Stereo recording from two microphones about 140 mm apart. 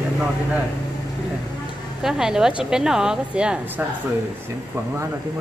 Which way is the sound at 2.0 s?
5° right (ahead or behind).